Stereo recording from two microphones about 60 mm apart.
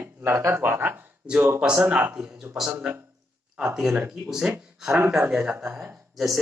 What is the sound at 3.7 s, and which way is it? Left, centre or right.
Speech, centre.